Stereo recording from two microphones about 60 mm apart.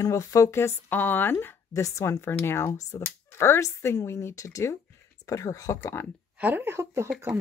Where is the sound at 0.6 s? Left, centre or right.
Left.